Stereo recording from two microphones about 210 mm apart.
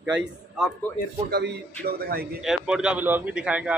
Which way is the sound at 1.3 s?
50° right (ahead or behind).